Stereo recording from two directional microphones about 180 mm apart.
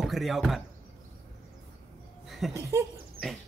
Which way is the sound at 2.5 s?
15° right (ahead or behind).